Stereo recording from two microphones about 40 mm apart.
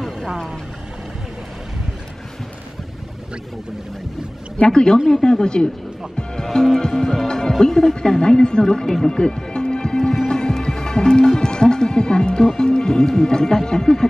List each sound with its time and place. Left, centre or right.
4.6 s speech: left
6.1 s music: centre
7.2 s speech: centre
10.2 s music: centre
12.5 s speech: centre